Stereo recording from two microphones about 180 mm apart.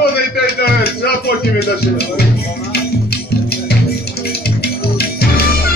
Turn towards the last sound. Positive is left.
turn(degrees=60)  # may be behind; listen again after turning